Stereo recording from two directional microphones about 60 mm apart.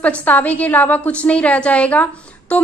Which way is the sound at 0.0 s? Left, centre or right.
Left.